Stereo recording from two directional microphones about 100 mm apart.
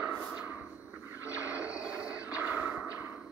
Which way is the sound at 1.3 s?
10° right (ahead or behind).